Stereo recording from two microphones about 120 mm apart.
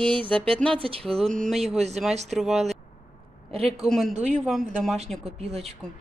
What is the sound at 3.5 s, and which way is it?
Speech, 55° right (ahead or behind).